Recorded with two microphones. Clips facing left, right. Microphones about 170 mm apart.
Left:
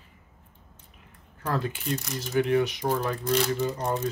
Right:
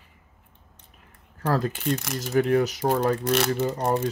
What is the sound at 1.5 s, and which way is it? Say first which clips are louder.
Speech: right 4 dB; 40° right (ahead or behind).